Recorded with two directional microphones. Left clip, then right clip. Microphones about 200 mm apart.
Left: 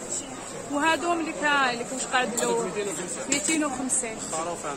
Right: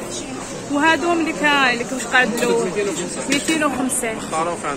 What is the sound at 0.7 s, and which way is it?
Speech, 5° left (ahead or behind).